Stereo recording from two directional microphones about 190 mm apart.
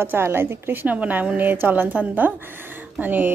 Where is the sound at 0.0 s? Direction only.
10° right (ahead or behind).